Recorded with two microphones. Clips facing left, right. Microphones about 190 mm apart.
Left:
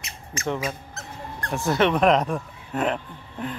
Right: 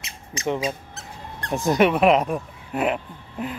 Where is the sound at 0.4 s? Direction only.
15° right (ahead or behind).